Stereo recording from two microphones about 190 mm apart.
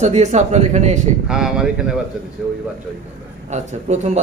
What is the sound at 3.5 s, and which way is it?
Speech, 40° right (ahead or behind).